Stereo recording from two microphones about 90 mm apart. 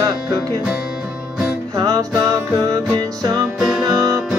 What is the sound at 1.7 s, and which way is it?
Music, 45° right (ahead or behind).